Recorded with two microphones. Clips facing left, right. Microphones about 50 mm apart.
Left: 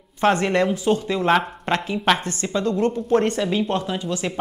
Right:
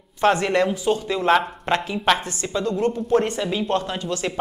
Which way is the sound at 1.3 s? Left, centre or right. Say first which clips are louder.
Right 2 dB; centre.